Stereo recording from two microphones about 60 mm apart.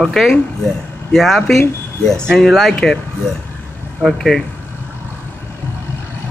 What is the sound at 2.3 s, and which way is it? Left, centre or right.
Speech, centre.